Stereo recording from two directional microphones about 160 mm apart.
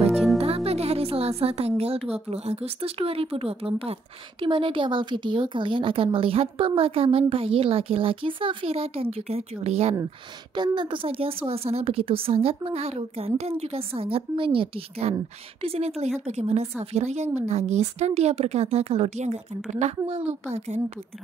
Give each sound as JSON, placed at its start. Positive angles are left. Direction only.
{"t": 0.7, "sound": "a woman's voice", "side_deg": -40}
{"t": 10.5, "sound": "a woman's voice", "side_deg": -30}